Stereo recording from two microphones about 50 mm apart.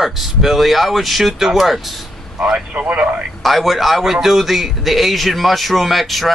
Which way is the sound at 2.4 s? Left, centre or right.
Centre.